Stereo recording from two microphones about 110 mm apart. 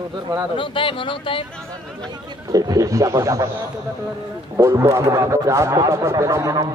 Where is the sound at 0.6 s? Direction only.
50° left (ahead or behind).